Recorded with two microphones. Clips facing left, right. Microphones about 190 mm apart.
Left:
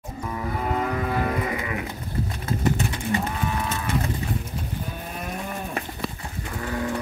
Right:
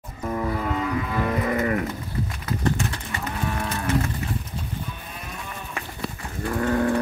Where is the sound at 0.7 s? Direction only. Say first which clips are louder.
Left 1 dB; 50° left (ahead or behind).